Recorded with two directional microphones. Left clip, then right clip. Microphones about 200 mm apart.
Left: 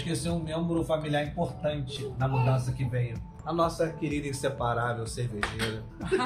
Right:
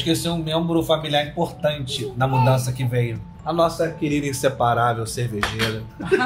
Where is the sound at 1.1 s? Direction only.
55° right (ahead or behind).